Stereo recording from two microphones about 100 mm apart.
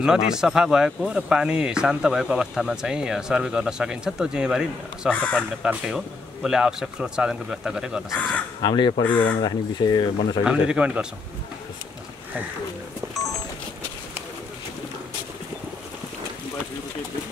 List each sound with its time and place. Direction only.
0.0 s speech: 5° right (ahead or behind)
5.1 s speech: 10° left (ahead or behind)
5.6 s speech: 10° right (ahead or behind)
8.6 s speech: 50° left (ahead or behind)
10.4 s speech: 10° right (ahead or behind)